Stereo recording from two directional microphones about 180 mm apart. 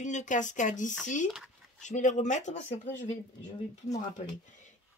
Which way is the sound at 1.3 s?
5° right (ahead or behind).